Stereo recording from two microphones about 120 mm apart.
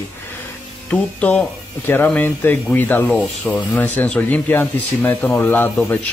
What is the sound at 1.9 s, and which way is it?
Speech, 15° left (ahead or behind).